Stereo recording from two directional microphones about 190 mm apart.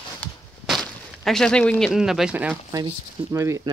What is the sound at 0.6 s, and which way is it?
Speech, centre (ahead or behind).